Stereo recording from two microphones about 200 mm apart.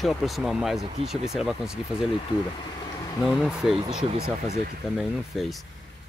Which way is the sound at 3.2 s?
Centre (ahead or behind).